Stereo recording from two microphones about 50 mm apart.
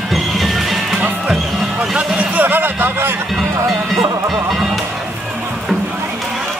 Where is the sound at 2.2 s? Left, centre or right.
Right.